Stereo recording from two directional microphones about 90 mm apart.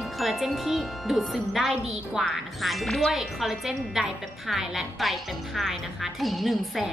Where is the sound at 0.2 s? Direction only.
Centre (ahead or behind).